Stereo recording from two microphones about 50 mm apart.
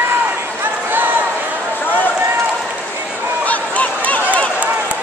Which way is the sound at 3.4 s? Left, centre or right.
Left.